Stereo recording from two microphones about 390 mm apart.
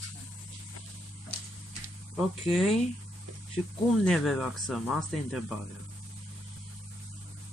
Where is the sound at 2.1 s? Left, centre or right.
Centre.